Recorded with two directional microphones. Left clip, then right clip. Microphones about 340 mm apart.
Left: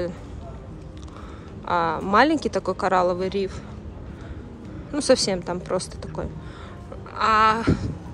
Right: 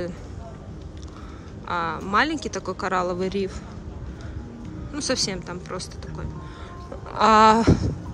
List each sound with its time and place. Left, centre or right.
1.7 s speech: centre
4.9 s speech: centre
7.1 s a sound: centre